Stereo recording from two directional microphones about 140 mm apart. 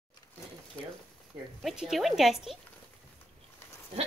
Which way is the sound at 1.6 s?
Centre (ahead or behind).